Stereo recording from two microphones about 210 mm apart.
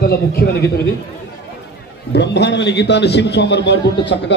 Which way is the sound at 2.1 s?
55° left (ahead or behind).